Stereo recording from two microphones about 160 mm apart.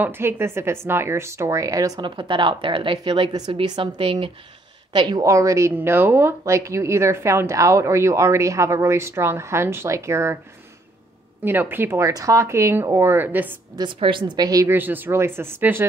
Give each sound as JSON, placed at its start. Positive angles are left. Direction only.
{"t": 0.0, "sound": "a woman's voice", "side_deg": -15}
{"t": 4.9, "sound": "speech", "side_deg": -20}
{"t": 11.4, "sound": "speech", "side_deg": -15}
{"t": 13.7, "sound": "speech", "side_deg": -30}